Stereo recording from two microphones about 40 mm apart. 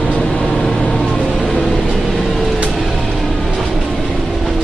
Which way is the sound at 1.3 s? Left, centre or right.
Centre.